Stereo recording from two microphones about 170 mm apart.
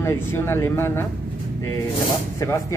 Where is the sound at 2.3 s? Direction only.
15° left (ahead or behind).